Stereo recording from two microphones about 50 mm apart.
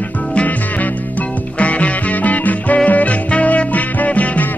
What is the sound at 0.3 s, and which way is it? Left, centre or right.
Music, left.